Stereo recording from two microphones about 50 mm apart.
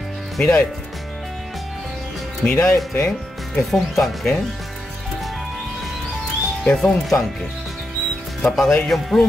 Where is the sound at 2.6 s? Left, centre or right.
Left.